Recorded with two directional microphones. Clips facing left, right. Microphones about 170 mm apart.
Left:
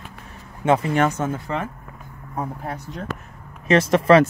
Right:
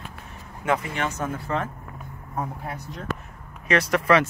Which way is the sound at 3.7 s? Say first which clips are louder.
Left 5 dB; 25° left (ahead or behind).